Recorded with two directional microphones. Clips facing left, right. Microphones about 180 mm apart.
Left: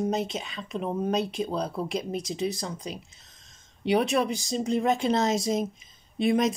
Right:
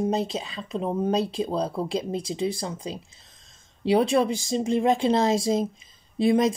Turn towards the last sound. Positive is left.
turn(degrees=-30)  # may be behind; listen again after turning